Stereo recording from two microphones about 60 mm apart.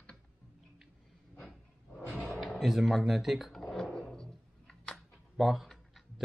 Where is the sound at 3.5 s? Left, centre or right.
Centre.